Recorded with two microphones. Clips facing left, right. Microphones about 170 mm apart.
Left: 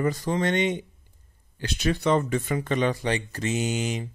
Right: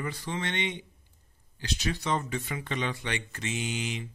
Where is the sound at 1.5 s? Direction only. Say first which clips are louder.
Left 6 dB; 55° left (ahead or behind).